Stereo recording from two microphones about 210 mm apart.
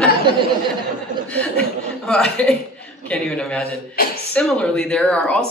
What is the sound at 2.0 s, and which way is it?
Speech, 5° left (ahead or behind).